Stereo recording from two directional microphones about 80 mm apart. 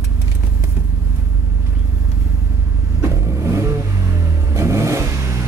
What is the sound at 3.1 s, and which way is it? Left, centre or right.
Vehicle, right.